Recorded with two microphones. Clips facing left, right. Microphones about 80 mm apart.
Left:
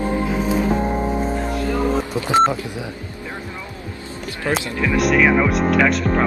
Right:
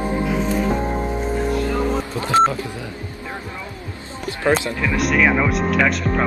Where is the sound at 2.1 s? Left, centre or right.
Centre.